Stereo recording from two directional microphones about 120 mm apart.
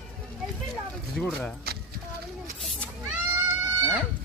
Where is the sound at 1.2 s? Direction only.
5° left (ahead or behind).